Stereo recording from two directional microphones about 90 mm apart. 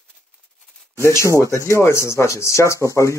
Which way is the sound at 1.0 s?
30° left (ahead or behind).